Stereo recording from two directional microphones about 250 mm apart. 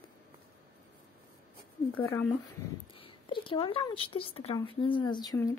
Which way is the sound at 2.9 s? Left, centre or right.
Left.